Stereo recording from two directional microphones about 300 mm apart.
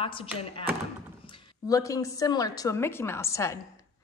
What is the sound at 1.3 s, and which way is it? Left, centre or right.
A woman's voice, centre.